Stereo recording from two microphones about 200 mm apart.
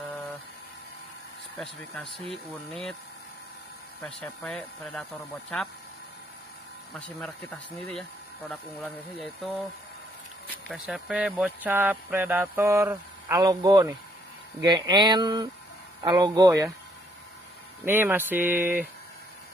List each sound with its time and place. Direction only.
1.6 s speech: 5° left (ahead or behind)
4.0 s speech: 5° left (ahead or behind)
6.9 s speech: 5° left (ahead or behind)
10.7 s speech: 5° right (ahead or behind); by 16.6 s 20° right (ahead or behind)
17.8 s speech: 10° right (ahead or behind)